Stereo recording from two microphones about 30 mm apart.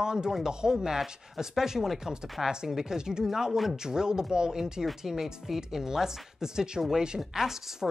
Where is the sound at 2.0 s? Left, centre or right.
Right.